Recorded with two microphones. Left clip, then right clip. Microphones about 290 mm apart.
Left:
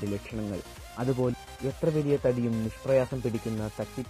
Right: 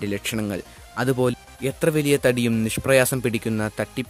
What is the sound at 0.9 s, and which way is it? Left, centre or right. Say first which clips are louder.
Speech: right 7 dB; right.